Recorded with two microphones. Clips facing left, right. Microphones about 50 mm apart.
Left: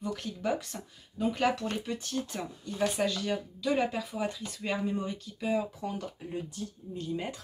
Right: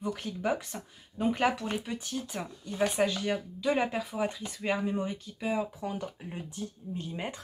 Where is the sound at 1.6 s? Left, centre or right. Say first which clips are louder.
Even; centre.